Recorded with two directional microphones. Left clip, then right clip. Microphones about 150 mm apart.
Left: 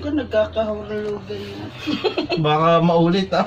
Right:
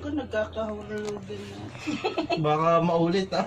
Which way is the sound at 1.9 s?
10° right (ahead or behind).